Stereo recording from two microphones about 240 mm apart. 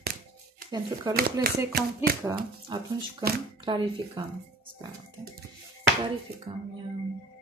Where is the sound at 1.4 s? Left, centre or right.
Right.